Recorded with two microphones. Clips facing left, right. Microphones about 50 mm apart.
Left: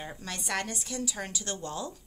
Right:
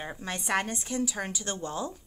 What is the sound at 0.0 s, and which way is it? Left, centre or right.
Speech, right.